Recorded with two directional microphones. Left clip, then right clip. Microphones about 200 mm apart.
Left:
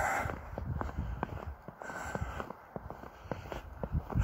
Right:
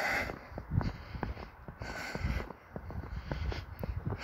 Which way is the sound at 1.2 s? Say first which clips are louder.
Left 2 dB; 55° left (ahead or behind).